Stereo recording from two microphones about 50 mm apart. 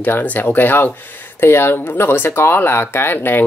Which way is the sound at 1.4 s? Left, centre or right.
Left.